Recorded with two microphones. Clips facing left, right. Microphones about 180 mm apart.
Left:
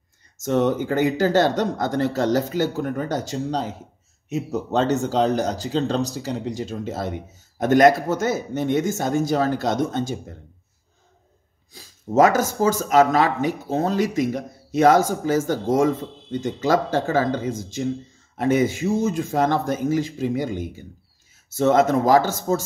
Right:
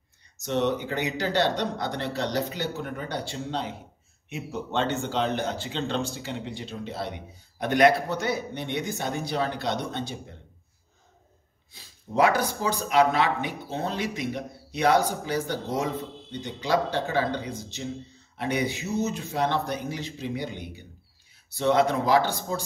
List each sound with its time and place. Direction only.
0.4 s speech: 45° left (ahead or behind)
11.7 s speech: 45° left (ahead or behind)